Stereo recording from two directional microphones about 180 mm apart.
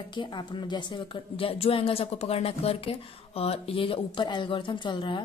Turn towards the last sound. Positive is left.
turn(degrees=25)  # may be behind; listen again after turning